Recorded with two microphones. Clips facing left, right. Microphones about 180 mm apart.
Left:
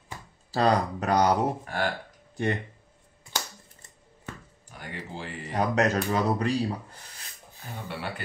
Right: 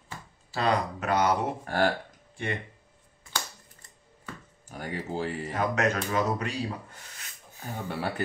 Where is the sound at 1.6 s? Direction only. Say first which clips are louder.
Right 4 dB; 45° right (ahead or behind).